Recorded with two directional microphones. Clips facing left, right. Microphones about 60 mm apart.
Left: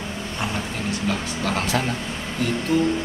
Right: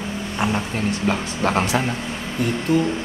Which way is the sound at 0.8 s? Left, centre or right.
Right.